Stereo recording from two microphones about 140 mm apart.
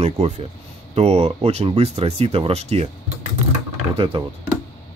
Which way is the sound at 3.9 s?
40° right (ahead or behind).